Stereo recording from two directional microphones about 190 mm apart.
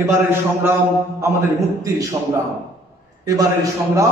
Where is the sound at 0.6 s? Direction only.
10° right (ahead or behind).